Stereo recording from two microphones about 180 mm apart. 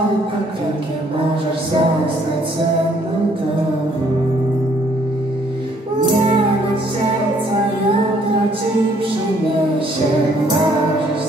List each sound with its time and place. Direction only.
6.0 s music: 30° right (ahead or behind)